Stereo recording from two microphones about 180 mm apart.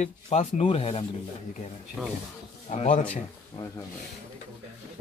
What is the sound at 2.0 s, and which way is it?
Speech, centre (ahead or behind).